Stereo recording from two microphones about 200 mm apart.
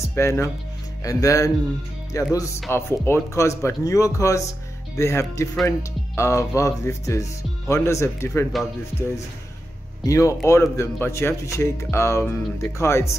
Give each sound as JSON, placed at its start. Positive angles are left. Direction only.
{"t": 0.0, "sound": "speech", "side_deg": 15}
{"t": 8.5, "sound": "speech", "side_deg": 0}
{"t": 10.0, "sound": "speech", "side_deg": 15}